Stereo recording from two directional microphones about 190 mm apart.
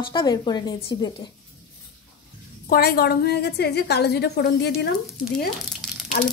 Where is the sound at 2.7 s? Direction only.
55° left (ahead or behind).